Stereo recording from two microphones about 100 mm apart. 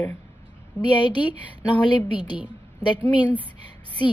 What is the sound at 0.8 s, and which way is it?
A woman's voice, 50° left (ahead or behind).